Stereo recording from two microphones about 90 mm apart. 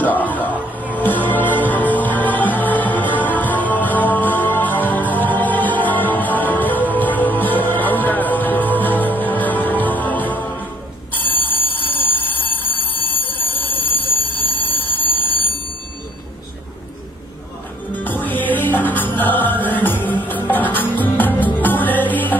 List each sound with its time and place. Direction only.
0.9 s music: 20° left (ahead or behind)
11.2 s alarm: 20° left (ahead or behind)
17.9 s music: 20° left (ahead or behind)